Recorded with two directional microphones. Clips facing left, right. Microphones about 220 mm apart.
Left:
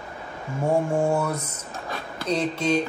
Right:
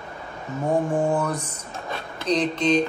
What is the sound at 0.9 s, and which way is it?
Speech, 10° left (ahead or behind).